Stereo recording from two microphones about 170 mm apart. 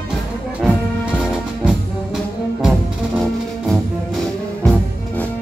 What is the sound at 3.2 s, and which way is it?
Music, centre (ahead or behind).